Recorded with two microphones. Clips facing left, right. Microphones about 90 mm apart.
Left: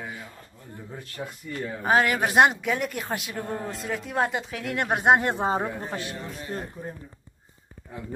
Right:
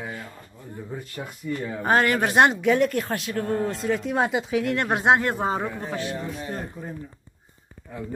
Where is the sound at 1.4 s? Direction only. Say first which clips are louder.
Right 8 dB; 5° right (ahead or behind).